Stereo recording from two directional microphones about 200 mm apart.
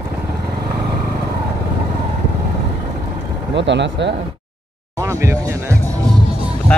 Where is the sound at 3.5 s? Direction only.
60° right (ahead or behind).